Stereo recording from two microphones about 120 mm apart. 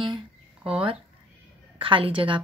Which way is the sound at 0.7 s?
50° right (ahead or behind).